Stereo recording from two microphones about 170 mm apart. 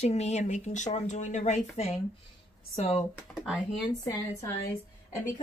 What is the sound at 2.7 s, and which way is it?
Speech, 40° left (ahead or behind).